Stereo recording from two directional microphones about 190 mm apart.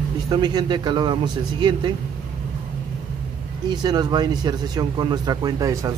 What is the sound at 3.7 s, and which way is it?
Speech, 20° right (ahead or behind).